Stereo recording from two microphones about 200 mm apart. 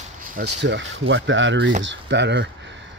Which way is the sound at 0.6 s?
65° right (ahead or behind).